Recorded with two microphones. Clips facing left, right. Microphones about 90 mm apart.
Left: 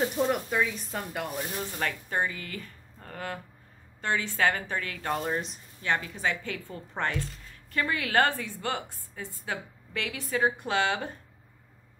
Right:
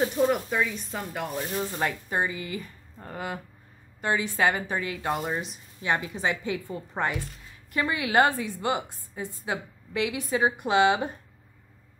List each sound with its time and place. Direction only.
0.0 s speech: 5° right (ahead or behind)
1.8 s a woman's voice: 15° right (ahead or behind)
5.8 s a woman's voice: 15° right (ahead or behind)